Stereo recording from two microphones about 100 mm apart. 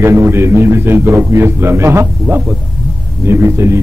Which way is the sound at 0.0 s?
25° right (ahead or behind).